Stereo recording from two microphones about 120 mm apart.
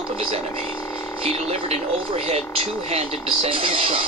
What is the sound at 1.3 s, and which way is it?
Speech, 60° right (ahead or behind).